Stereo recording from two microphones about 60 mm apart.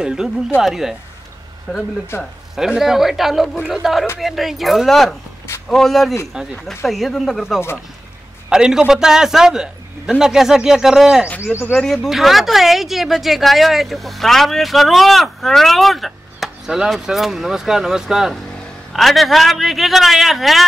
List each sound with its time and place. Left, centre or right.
0.0 s a man's voice: centre
2.1 s speech: left
2.5 s speech: centre
6.4 s a man's voice: centre
6.8 s speech: centre
8.5 s a man's voice: centre
16.6 s a man's voice: centre